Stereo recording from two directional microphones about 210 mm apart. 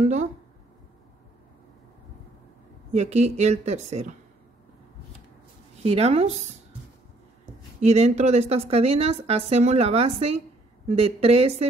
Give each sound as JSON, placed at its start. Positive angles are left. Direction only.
{"t": 0.0, "sound": "a woman's voice", "side_deg": -35}
{"t": 2.9, "sound": "a woman's voice", "side_deg": -30}
{"t": 5.8, "sound": "a woman's voice", "side_deg": -30}
{"t": 7.8, "sound": "a woman's voice", "side_deg": -30}